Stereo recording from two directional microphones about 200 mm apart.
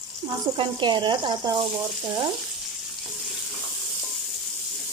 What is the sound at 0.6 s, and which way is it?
Speech, 25° right (ahead or behind).